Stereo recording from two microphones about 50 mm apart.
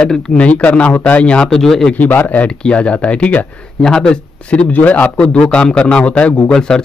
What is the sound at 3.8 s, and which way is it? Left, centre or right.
Speech, centre.